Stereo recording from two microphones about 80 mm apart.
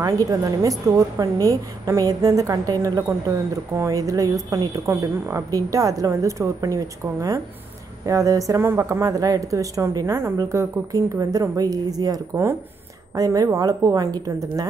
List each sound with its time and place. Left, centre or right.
0.0 s a woman's voice: right
8.6 s speech: right
9.0 s a woman's voice: right